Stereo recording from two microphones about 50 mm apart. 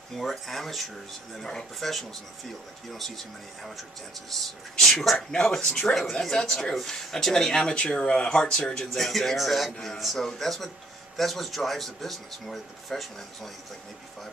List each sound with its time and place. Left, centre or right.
0.1 s speech: centre
1.3 s speech: centre
4.3 s speech: centre
7.7 s speech: left; by 13.5 s centre